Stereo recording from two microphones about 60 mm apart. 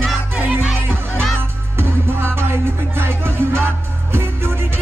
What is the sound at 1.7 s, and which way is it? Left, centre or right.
Music, right.